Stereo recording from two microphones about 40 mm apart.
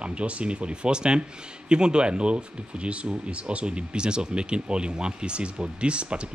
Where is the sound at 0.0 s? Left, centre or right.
Right.